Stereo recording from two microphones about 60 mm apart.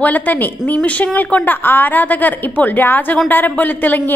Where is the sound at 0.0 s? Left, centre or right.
Left.